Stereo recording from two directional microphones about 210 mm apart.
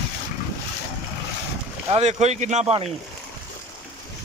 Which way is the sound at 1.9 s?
30° right (ahead or behind).